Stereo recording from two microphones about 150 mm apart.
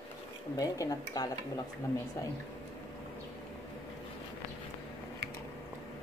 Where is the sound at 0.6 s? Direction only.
25° left (ahead or behind).